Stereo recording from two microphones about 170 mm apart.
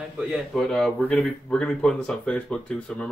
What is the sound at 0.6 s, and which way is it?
Speech, 5° left (ahead or behind).